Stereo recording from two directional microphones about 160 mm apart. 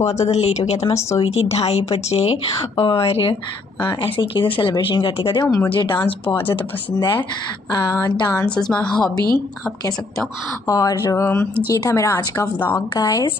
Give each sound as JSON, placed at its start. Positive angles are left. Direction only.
{"t": 0.0, "sound": "speech", "side_deg": 40}
{"t": 8.5, "sound": "a woman's voice", "side_deg": 5}
{"t": 10.7, "sound": "a woman's voice", "side_deg": 20}
{"t": 12.9, "sound": "speech", "side_deg": 25}